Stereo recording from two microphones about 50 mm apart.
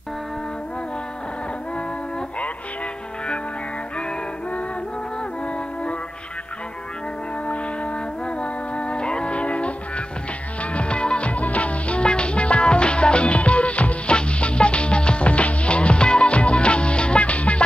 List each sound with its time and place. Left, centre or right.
8.4 s music: left